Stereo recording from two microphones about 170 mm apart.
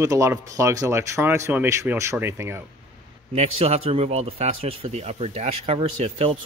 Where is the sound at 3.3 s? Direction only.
35° right (ahead or behind).